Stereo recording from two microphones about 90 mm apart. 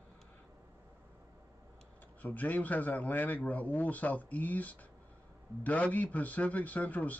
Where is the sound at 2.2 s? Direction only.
20° left (ahead or behind).